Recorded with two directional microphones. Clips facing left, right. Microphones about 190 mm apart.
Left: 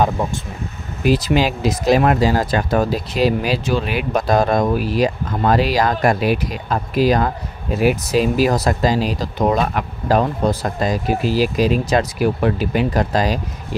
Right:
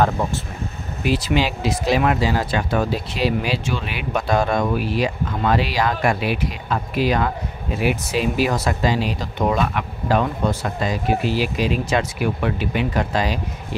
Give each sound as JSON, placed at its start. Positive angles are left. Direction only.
{"t": 0.2, "sound": "speech", "side_deg": 20}
{"t": 1.0, "sound": "speech", "side_deg": 40}